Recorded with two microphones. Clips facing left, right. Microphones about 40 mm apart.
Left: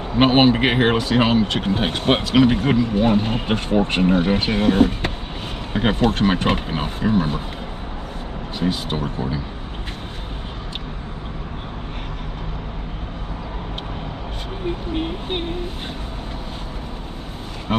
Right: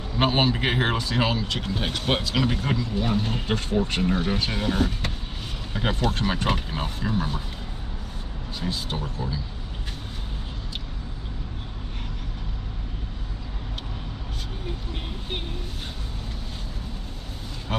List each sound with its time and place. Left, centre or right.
0.1 s speech: left
8.5 s speech: left
14.9 s speech: left
17.7 s speech: left